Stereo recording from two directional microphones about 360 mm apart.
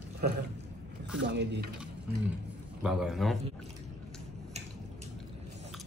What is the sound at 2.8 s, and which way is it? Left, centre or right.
Speech, centre.